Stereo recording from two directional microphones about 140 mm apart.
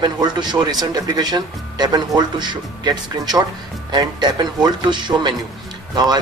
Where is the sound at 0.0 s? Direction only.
30° right (ahead or behind).